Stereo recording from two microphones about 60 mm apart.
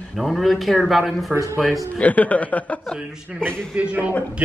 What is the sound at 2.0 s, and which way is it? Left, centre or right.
Speech, left.